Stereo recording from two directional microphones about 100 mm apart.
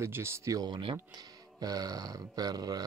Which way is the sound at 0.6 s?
45° right (ahead or behind).